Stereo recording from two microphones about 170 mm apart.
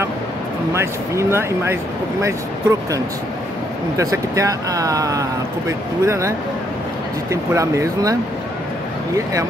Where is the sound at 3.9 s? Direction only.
20° right (ahead or behind).